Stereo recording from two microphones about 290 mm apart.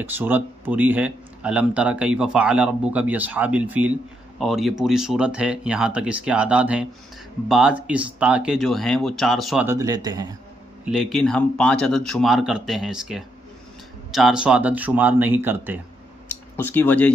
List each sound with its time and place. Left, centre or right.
0.0 s speech: centre
10.9 s speech: centre
16.5 s speech: centre